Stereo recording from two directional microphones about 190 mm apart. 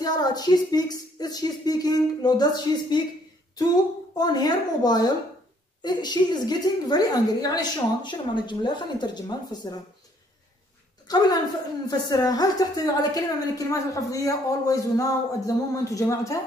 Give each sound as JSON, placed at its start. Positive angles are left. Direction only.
{"t": 0.0, "sound": "a woman's voice", "side_deg": 20}
{"t": 4.2, "sound": "a woman's voice", "side_deg": 20}
{"t": 11.1, "sound": "a woman's voice", "side_deg": 20}